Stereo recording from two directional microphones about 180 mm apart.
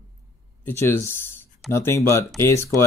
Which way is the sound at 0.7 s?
15° left (ahead or behind).